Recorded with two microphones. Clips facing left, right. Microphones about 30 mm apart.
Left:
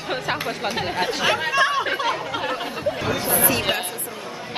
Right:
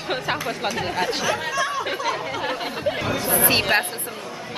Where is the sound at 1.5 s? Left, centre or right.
Left.